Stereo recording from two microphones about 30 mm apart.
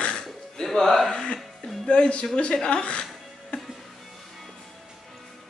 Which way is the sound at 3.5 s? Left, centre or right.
Left.